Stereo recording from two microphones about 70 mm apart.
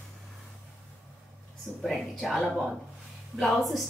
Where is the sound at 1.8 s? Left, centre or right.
Centre.